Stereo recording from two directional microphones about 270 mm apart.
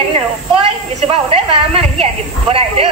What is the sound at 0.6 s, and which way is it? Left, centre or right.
A woman's voice, right.